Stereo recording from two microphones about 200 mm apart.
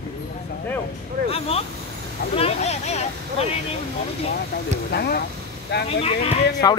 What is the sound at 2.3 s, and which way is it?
Speech, 30° left (ahead or behind).